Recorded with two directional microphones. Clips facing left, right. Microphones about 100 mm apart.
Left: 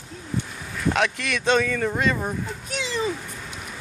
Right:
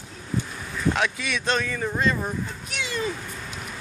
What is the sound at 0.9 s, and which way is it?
Speech, 75° left (ahead or behind).